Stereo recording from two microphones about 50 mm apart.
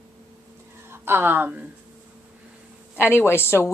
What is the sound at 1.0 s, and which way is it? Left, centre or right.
Speech, right.